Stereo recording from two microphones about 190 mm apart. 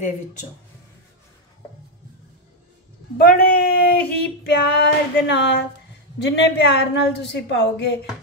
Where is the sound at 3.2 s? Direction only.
55° left (ahead or behind).